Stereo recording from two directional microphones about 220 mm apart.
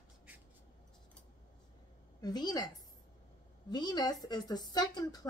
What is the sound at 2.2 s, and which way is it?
Speech, 20° left (ahead or behind).